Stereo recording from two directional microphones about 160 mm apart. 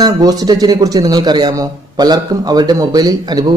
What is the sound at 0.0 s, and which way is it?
A man's voice, 25° right (ahead or behind).